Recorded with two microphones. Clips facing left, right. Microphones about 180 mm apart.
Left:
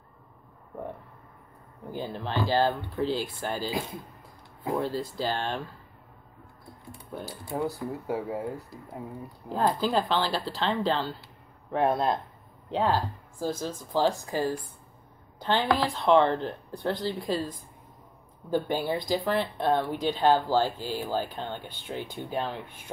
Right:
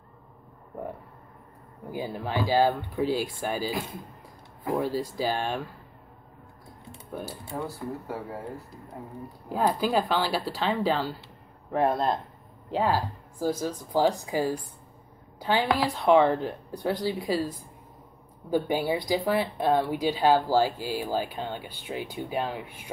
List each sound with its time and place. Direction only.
1.9 s speech: 10° right (ahead or behind)
4.7 s speech: 10° right (ahead or behind)
7.2 s speech: 15° left (ahead or behind)
9.5 s speech: 10° right (ahead or behind)